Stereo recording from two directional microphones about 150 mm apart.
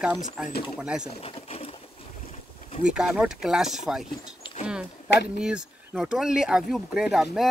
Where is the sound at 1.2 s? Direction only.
40° left (ahead or behind).